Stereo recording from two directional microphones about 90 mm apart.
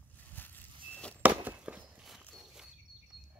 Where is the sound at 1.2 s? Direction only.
15° right (ahead or behind).